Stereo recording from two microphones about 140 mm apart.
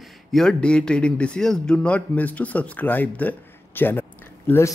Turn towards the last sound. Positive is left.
turn(degrees=15)  # may be behind; listen again after turning